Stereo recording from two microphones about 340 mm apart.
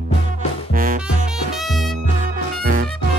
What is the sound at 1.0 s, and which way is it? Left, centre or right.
Music, centre.